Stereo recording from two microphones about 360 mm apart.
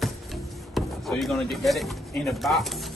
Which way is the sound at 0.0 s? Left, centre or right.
Centre.